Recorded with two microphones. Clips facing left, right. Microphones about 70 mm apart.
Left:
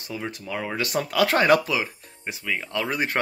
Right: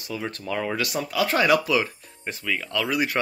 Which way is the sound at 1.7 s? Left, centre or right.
Centre.